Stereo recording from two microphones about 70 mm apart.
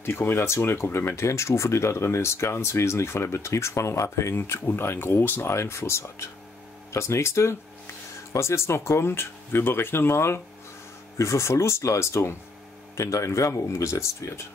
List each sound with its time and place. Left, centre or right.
0.0 s speech: left